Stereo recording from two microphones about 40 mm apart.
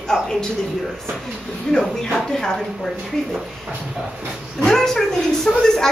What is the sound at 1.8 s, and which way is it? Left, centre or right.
Speech, centre.